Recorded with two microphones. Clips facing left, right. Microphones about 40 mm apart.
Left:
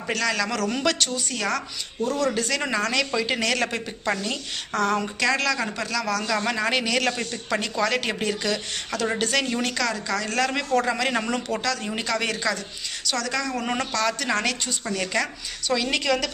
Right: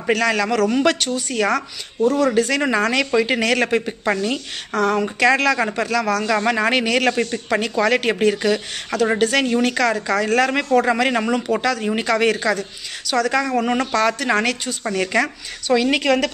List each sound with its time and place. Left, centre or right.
0.1 s speech: centre
4.7 s speech: centre
6.2 s speech: right
15.7 s speech: right